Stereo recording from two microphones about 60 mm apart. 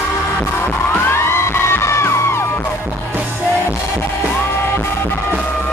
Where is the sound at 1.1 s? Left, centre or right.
Left.